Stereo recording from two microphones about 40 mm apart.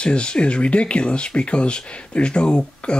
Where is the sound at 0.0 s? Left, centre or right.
Left.